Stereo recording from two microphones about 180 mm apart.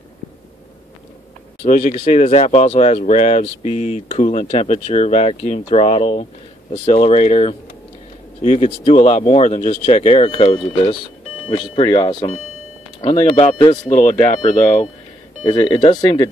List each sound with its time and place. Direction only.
1.6 s speech: 45° left (ahead or behind)
2.0 s speech: 35° left (ahead or behind)
15.4 s speech: 25° left (ahead or behind)